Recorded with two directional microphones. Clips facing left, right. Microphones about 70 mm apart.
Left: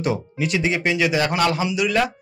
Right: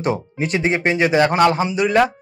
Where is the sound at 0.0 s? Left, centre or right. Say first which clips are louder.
Right 2 dB; right.